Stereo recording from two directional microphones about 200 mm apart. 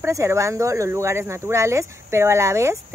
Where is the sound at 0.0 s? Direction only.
15° right (ahead or behind).